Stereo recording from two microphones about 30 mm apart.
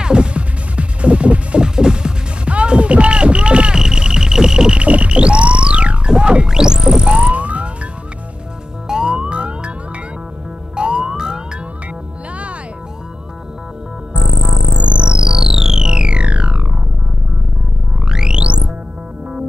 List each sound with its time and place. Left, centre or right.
0.0 s music: right
1.6 s music: right
2.4 s music: right
3.7 s music: right
4.7 s music: right
7.2 s music: right
8.8 s police car: right
9.3 s music: right
10.8 s police car: right
14.1 s music: right
16.2 s music: right
18.0 s music: right